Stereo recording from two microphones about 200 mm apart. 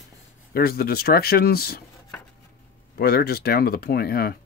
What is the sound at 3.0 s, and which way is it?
Speech, 50° left (ahead or behind).